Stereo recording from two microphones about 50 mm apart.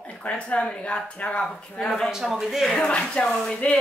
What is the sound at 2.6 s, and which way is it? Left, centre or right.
Speech, centre.